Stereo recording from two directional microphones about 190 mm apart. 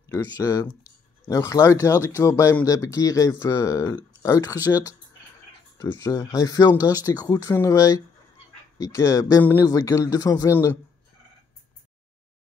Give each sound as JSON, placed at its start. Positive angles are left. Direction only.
{"t": 0.0, "sound": "speech", "side_deg": 15}
{"t": 5.8, "sound": "speech", "side_deg": 15}